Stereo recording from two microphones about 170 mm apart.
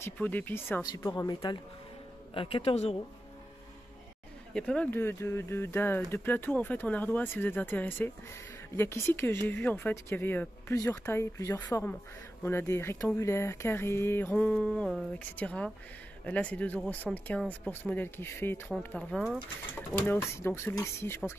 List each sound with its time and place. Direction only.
0.0 s speech: 10° left (ahead or behind)
0.9 s speech: 25° left (ahead or behind)
4.6 s speech: 5° left (ahead or behind)